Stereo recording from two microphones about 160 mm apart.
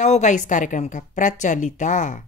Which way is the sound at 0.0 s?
50° left (ahead or behind).